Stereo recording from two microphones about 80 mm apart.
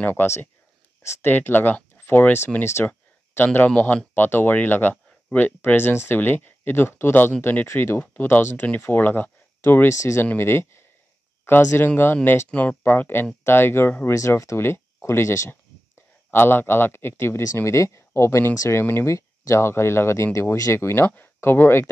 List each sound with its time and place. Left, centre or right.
0.0 s speech: left
2.9 s speech: left